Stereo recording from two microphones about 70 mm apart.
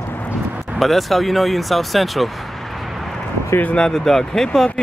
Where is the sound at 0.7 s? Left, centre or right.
Centre.